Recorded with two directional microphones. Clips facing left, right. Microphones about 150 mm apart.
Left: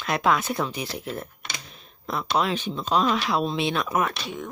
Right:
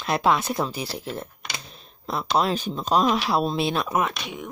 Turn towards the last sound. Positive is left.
turn(degrees=-20)  # may be behind; listen again after turning